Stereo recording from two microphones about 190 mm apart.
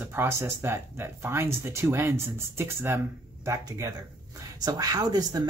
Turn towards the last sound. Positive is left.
turn(degrees=-20)  # may be behind; listen again after turning